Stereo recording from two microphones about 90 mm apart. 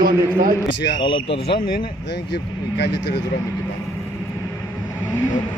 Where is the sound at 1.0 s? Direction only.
65° left (ahead or behind).